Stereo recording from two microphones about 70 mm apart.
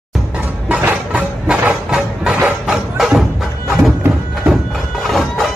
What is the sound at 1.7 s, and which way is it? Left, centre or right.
Music, centre.